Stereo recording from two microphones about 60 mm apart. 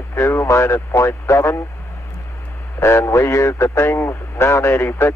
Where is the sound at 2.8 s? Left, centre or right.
Left.